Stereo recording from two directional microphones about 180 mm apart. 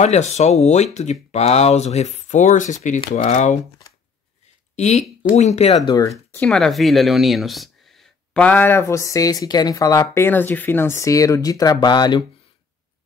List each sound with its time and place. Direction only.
0.0 s speech: 40° left (ahead or behind)
4.7 s speech: 40° left (ahead or behind)
5.9 s speech: 20° left (ahead or behind)
6.4 s speech: 5° left (ahead or behind); by 12.2 s 25° left (ahead or behind)